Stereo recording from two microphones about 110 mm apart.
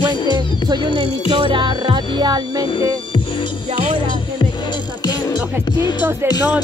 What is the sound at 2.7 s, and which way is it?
Music, 50° left (ahead or behind).